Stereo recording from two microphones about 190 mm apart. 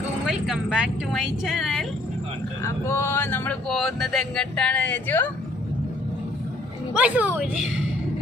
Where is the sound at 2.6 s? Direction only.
15° left (ahead or behind).